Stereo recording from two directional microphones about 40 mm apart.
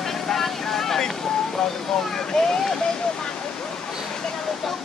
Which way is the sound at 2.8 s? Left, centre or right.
Centre.